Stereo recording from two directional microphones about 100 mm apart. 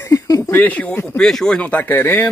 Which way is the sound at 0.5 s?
15° left (ahead or behind).